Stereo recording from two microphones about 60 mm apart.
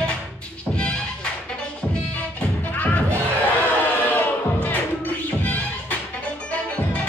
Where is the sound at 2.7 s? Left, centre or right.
Left.